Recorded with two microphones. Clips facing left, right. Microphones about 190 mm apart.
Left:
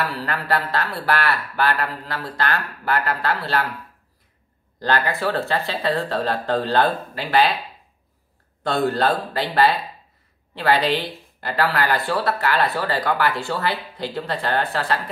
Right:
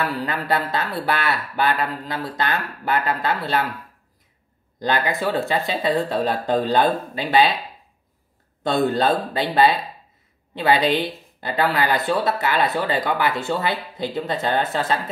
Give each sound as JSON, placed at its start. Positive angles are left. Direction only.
{"t": 0.2, "sound": "speech", "side_deg": -20}
{"t": 4.7, "sound": "speech", "side_deg": -15}
{"t": 8.6, "sound": "speech", "side_deg": -20}